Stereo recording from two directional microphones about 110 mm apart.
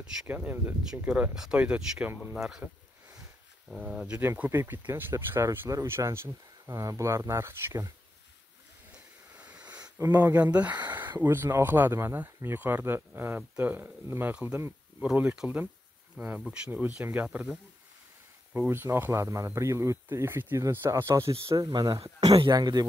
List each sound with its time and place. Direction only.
0.3 s speech: 15° right (ahead or behind)
3.7 s speech: 5° right (ahead or behind)
4.3 s speech: 20° right (ahead or behind)
9.3 s wheeze: 10° right (ahead or behind)
9.9 s speech: 20° right (ahead or behind)
21.5 s speech: 40° right (ahead or behind)